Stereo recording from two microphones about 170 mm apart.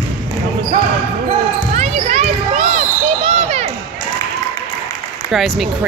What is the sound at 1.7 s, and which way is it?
Basketball bounce, 45° right (ahead or behind).